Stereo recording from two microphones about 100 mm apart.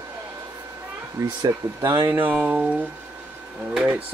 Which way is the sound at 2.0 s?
15° right (ahead or behind).